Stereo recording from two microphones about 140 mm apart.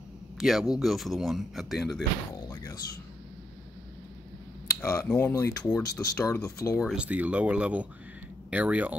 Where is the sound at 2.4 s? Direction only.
25° left (ahead or behind).